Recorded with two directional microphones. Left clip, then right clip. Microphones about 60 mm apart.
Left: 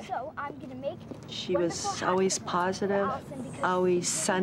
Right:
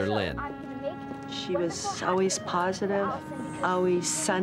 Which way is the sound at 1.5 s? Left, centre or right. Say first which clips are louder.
Left 1 dB; centre.